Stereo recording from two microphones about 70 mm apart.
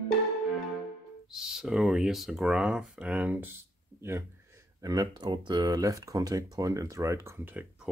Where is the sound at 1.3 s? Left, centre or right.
Centre.